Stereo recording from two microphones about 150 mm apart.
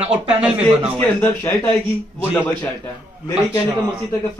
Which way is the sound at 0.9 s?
15° left (ahead or behind).